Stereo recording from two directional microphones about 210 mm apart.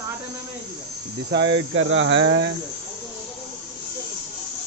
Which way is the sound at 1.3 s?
55° right (ahead or behind).